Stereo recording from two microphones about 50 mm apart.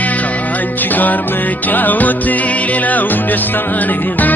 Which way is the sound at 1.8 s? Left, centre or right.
Left.